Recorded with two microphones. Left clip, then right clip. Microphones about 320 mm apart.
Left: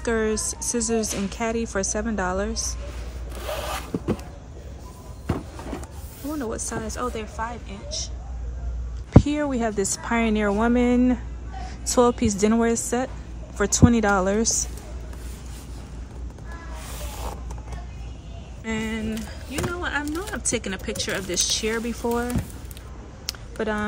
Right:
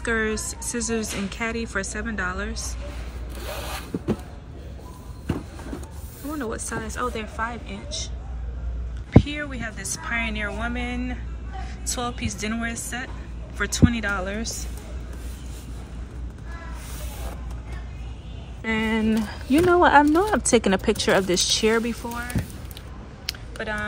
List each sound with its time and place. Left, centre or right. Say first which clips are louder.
0.0 s speech: left 1 dB; centre
2.5 s speech: left 5 dB; centre
3.4 s zipper: left 4 dB; centre
5.2 s walk: left 1 dB; centre
6.2 s speech: left 1 dB; centre
9.2 s a woman's voice: left 6 dB; centre
18.7 s speech: right 5 dB; centre
23.6 s speech: left 2 dB; centre